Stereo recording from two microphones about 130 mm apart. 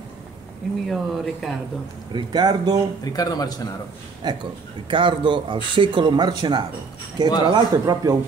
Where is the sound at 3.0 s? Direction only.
30° left (ahead or behind).